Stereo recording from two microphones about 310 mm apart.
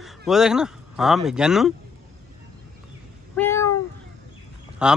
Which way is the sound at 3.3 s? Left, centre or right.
Centre.